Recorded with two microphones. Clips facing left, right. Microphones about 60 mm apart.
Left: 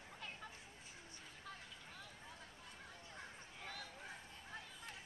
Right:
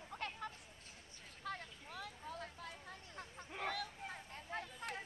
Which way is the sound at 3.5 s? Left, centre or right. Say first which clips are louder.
Right 9 dB; right.